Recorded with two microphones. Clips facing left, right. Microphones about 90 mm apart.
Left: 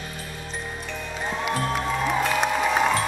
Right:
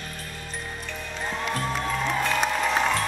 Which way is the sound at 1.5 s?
5° left (ahead or behind).